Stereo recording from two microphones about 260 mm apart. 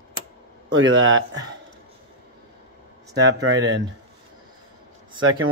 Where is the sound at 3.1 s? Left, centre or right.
Right.